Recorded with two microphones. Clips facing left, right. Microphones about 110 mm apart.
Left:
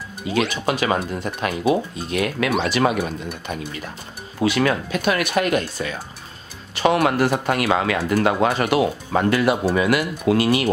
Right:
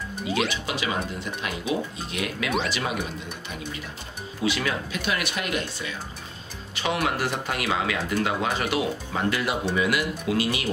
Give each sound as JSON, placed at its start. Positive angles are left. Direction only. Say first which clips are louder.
{"t": 0.3, "sound": "speech", "louder": "left 5 dB", "side_deg": -10}
{"t": 0.7, "sound": "speech", "louder": "left 7 dB", "side_deg": 50}
{"t": 4.4, "sound": "speech", "louder": "left 7 dB", "side_deg": 60}